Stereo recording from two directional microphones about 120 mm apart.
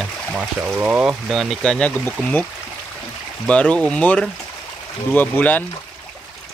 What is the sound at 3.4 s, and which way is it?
Speech, 10° left (ahead or behind).